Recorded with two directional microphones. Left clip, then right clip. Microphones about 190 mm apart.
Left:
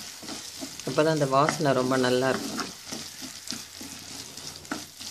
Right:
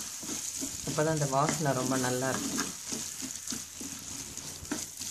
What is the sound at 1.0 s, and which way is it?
Speech, 30° left (ahead or behind).